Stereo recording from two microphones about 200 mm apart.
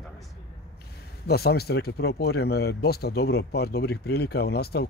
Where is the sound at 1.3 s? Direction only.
55° left (ahead or behind).